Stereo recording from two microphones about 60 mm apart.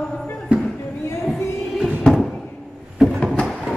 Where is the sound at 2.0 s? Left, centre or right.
Centre.